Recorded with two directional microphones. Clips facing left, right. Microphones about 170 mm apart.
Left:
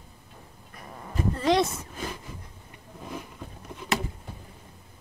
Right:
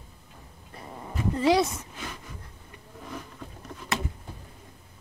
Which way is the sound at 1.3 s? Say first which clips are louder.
Right 1 dB; 10° right (ahead or behind).